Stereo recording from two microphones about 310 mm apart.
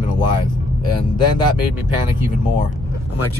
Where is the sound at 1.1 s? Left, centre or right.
Centre.